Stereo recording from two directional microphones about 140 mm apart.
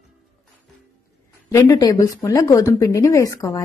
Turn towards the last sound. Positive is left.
turn(degrees=25)  # may be behind; listen again after turning